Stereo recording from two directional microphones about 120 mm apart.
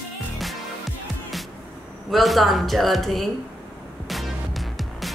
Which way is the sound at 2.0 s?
Centre (ahead or behind).